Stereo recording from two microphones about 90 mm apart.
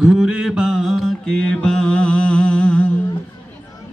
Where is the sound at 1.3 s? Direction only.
10° left (ahead or behind).